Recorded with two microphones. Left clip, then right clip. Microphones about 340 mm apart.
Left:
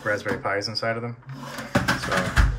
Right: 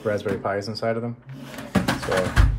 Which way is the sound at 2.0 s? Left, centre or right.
Right.